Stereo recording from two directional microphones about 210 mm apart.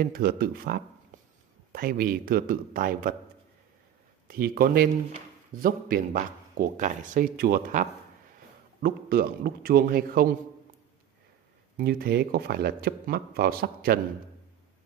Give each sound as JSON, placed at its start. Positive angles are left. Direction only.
{"t": 0.0, "sound": "speech", "side_deg": -45}
{"t": 1.1, "sound": "a sound", "side_deg": -35}
{"t": 1.7, "sound": "speech", "side_deg": -45}
{"t": 4.3, "sound": "speech", "side_deg": -45}
{"t": 11.7, "sound": "speech", "side_deg": -45}